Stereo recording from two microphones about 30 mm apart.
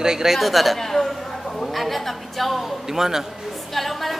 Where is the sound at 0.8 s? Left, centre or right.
Centre.